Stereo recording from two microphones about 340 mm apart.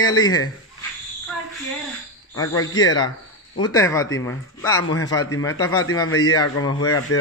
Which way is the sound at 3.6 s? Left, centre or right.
Centre.